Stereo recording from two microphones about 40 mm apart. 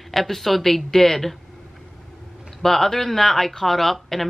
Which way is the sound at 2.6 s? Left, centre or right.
Centre.